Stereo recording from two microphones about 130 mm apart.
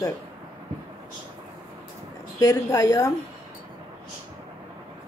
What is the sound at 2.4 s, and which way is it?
Speech, 25° left (ahead or behind).